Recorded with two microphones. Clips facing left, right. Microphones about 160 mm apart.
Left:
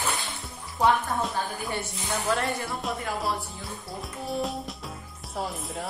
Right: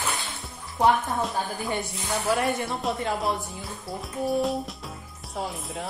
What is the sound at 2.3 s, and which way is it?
Speech, 20° right (ahead or behind).